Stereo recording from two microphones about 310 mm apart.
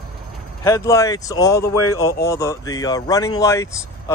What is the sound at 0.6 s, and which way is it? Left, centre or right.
Speech, centre.